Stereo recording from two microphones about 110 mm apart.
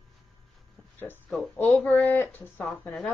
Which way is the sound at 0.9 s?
20° left (ahead or behind).